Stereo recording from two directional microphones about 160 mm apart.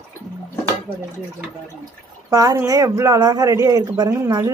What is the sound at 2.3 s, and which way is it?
Speech, 20° right (ahead or behind).